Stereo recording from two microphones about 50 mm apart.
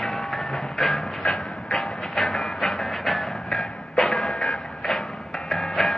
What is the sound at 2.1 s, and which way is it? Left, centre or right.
Music, centre.